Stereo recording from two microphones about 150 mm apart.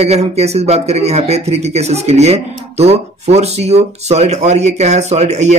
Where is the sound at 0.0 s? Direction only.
45° right (ahead or behind).